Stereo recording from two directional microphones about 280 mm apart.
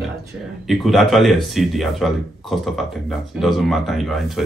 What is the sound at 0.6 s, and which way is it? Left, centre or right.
Speech, centre.